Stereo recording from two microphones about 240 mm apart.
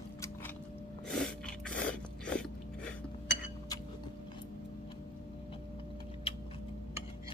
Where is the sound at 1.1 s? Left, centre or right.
Centre.